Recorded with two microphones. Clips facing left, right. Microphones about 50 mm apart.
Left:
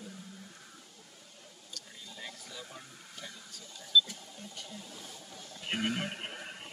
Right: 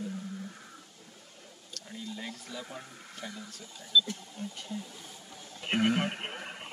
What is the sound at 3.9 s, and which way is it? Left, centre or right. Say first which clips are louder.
Speech: even; centre.